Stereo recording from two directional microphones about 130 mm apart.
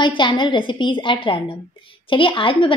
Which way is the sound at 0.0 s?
40° left (ahead or behind).